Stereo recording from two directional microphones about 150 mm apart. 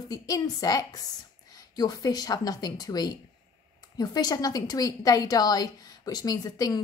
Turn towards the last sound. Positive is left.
turn(degrees=25)  # may be behind; listen again after turning